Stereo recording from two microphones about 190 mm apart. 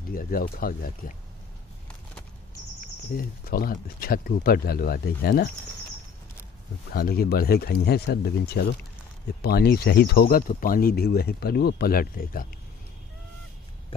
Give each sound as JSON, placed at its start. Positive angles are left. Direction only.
{"t": 0.1, "sound": "speech", "side_deg": 50}
{"t": 2.8, "sound": "speech", "side_deg": 50}
{"t": 6.9, "sound": "speech", "side_deg": 55}